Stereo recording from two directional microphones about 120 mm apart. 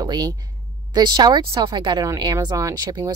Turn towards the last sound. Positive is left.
turn(degrees=-30)  # may be behind; listen again after turning